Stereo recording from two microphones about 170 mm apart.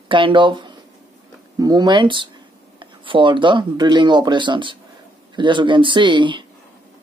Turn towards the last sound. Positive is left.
turn(degrees=-30)  # may be behind; listen again after turning